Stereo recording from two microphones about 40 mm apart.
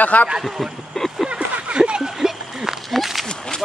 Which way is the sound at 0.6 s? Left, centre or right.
Centre.